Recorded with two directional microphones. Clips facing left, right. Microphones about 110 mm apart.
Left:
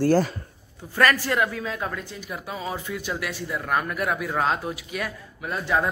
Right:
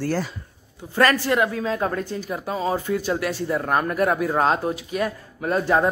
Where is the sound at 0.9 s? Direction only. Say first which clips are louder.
Right 3 dB; 25° right (ahead or behind).